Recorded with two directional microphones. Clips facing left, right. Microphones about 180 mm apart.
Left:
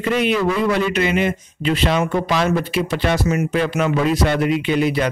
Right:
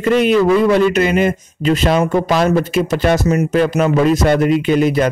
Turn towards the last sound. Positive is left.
turn(degrees=-45)  # may be behind; listen again after turning